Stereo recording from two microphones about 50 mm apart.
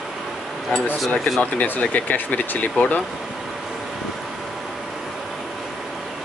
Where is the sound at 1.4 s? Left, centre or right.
Left.